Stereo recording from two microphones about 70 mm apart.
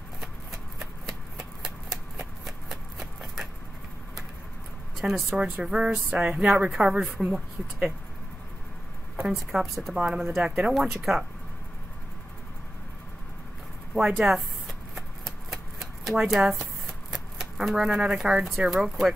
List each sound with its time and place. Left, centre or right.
0.2 s a sound: centre
4.9 s a sound: centre
5.4 s speech: centre
9.3 s speech: centre
14.1 s shuffling cards: centre
17.1 s speech: centre